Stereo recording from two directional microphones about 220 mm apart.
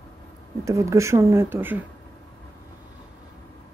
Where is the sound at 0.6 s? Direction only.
15° right (ahead or behind).